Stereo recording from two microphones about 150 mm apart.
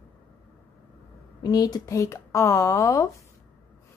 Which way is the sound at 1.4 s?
25° left (ahead or behind).